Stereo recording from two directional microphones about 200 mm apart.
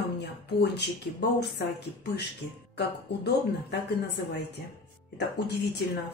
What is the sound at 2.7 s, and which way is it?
A woman's voice, 55° left (ahead or behind).